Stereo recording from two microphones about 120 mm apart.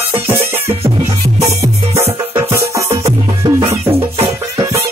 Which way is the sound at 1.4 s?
25° right (ahead or behind).